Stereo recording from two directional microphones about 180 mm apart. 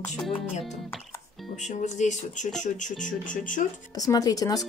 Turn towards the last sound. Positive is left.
turn(degrees=20)  # may be behind; listen again after turning